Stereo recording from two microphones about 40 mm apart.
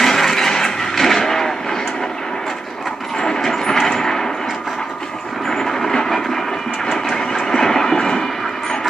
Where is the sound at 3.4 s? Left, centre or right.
Centre.